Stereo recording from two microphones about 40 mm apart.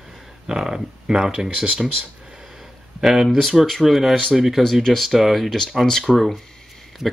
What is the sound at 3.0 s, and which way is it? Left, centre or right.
Speech, centre.